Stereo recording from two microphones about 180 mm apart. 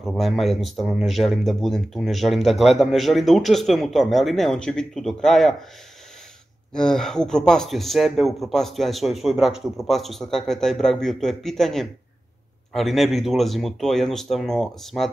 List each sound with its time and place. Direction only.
0.0 s speech: centre (ahead or behind)
6.7 s speech: 5° left (ahead or behind)